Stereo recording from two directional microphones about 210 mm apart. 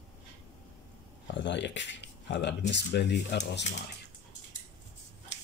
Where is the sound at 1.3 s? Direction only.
55° left (ahead or behind).